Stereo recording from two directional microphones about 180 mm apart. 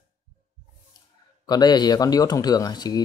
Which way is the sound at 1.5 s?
25° left (ahead or behind).